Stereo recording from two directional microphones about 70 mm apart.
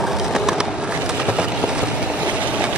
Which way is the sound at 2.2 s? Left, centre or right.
Centre.